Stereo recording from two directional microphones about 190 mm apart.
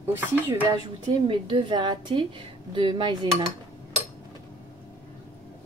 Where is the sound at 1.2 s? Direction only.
25° right (ahead or behind).